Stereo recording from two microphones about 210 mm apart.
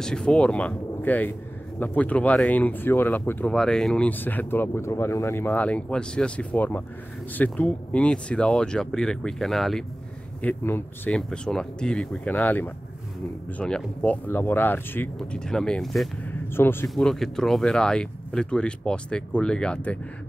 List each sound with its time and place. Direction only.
0.0 s speech: 5° left (ahead or behind)